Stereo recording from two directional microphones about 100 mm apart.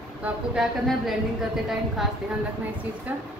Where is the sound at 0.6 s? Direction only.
Centre (ahead or behind).